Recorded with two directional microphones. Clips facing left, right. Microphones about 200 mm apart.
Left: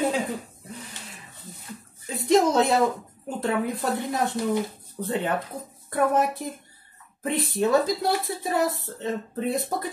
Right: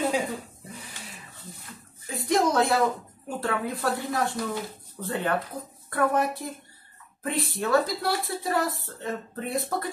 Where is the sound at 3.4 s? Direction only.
20° left (ahead or behind).